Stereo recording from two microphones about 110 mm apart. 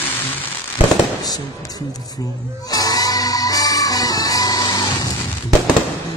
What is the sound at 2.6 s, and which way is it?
Music, 35° left (ahead or behind).